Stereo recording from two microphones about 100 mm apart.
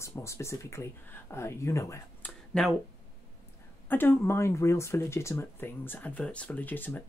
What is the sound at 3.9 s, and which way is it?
Speech, 20° left (ahead or behind).